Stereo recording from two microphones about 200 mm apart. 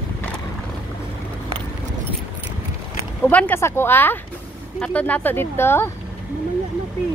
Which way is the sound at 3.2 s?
10° left (ahead or behind).